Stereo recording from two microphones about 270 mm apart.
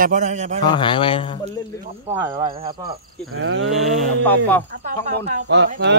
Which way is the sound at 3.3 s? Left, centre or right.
Right.